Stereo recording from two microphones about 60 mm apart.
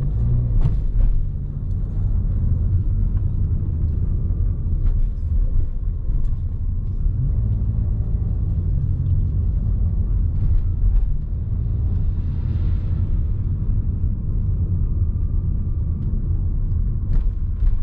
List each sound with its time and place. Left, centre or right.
0.0 s vehicle: centre
12.3 s vehicle: centre